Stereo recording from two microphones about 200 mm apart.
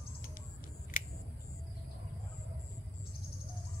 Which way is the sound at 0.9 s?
45° left (ahead or behind).